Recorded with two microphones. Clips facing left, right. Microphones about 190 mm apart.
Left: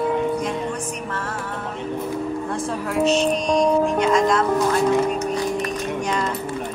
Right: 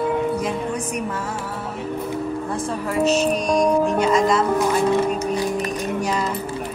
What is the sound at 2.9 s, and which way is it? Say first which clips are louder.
Music: even; centre (ahead or behind).